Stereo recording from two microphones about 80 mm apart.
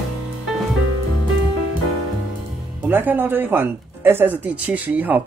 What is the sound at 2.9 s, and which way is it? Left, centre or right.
Speech, right.